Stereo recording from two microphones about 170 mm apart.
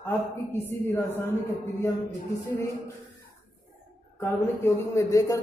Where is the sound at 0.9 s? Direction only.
15° left (ahead or behind).